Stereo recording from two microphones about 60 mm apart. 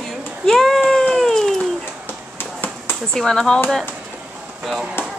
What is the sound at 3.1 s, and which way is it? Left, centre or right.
Speech, centre.